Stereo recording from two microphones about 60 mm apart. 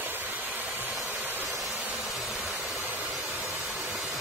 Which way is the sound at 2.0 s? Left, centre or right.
Centre.